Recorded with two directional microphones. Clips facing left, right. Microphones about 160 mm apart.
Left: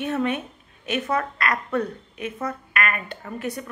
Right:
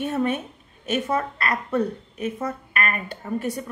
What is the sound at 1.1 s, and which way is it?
A woman's voice, 30° right (ahead or behind).